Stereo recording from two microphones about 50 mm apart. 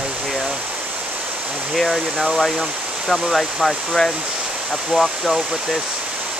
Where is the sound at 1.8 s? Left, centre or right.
Centre.